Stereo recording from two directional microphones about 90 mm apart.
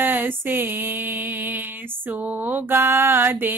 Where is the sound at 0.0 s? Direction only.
25° right (ahead or behind).